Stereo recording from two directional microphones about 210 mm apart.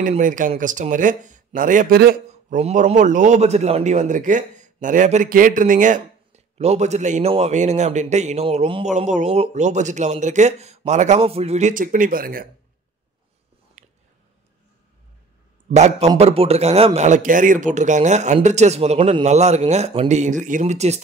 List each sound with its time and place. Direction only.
0.0 s speech: 40° right (ahead or behind)
2.6 s speech: 35° right (ahead or behind)
13.8 s a sound: 35° right (ahead or behind)
15.7 s speech: 35° right (ahead or behind)